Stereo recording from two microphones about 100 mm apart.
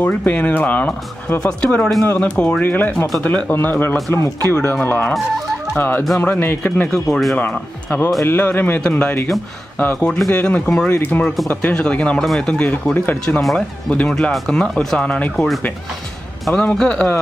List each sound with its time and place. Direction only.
0.0 s speech: 15° left (ahead or behind)
5.8 s speech: 20° left (ahead or behind); by 7.3 s centre (ahead or behind)
7.3 s speech: 15° left (ahead or behind)
9.9 s speech: 5° left (ahead or behind); by 13.2 s 20° left (ahead or behind)
13.2 s speech: 5° left (ahead or behind)
16.4 s speech: 5° left (ahead or behind)